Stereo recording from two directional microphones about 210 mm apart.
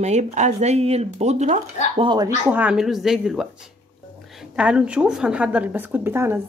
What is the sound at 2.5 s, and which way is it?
A woman's voice, 5° right (ahead or behind).